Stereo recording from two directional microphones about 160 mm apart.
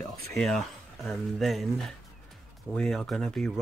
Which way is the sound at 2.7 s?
5° left (ahead or behind).